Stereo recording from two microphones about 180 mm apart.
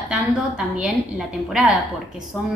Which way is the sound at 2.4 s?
5° right (ahead or behind).